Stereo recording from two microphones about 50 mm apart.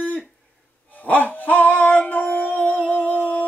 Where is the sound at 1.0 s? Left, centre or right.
Left.